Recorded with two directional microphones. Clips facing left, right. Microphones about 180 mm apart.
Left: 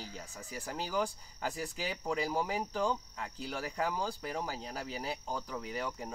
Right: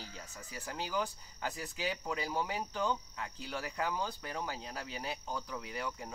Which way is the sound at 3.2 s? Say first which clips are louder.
Left 2 dB; 40° left (ahead or behind).